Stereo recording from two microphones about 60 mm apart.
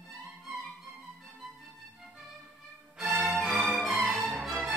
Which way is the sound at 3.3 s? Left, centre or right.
Centre.